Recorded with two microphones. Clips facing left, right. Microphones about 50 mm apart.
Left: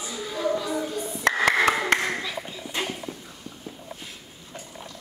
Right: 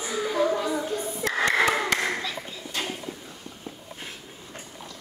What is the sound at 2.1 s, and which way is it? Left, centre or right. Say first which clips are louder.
Clapping: even; centre.